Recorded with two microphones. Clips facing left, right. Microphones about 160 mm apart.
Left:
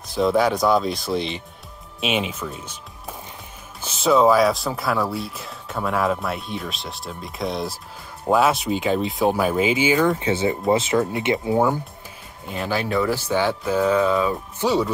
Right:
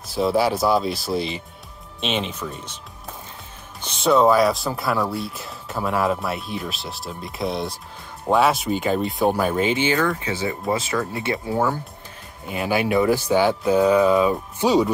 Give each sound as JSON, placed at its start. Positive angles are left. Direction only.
{"t": 0.0, "sound": "speech", "side_deg": -5}
{"t": 2.0, "sound": "speech", "side_deg": 5}
{"t": 3.8, "sound": "speech", "side_deg": 0}
{"t": 10.0, "sound": "speech", "side_deg": 25}
{"t": 12.4, "sound": "speech", "side_deg": -10}